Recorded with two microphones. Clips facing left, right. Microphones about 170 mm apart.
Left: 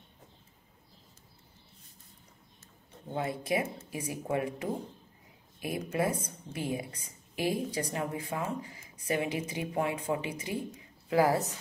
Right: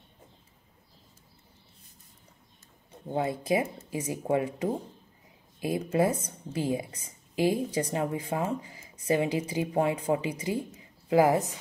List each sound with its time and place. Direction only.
3.1 s a woman's voice: 25° right (ahead or behind)